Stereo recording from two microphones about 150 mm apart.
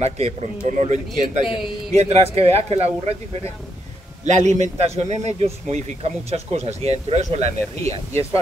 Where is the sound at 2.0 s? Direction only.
40° right (ahead or behind).